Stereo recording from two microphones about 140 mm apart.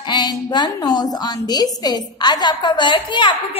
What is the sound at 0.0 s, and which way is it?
A woman's voice, 30° left (ahead or behind).